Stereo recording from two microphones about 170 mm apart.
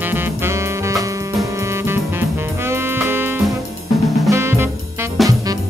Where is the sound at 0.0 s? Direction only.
10° right (ahead or behind).